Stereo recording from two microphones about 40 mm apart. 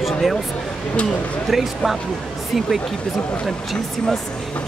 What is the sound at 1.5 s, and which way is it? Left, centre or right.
Speech, centre.